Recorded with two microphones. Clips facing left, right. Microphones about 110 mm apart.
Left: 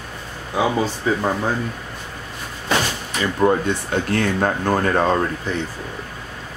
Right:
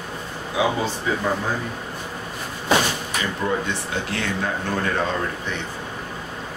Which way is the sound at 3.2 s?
40° left (ahead or behind).